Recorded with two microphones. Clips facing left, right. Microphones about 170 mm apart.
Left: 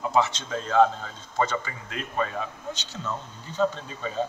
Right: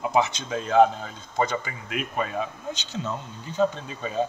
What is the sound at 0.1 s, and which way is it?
Speech, 15° right (ahead or behind).